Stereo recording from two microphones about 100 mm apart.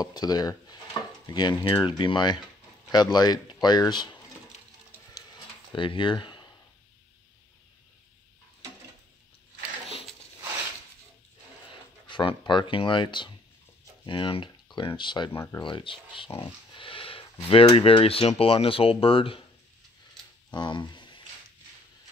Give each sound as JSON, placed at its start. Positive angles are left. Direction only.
{"t": 0.0, "sound": "speech", "side_deg": 40}
{"t": 5.8, "sound": "speech", "side_deg": 55}
{"t": 12.1, "sound": "speech", "side_deg": 55}
{"t": 15.3, "sound": "speech", "side_deg": 25}
{"t": 15.6, "sound": "speech", "side_deg": 55}
{"t": 16.3, "sound": "a sound", "side_deg": 60}
{"t": 17.7, "sound": "speech", "side_deg": 70}
{"t": 20.5, "sound": "speech", "side_deg": 50}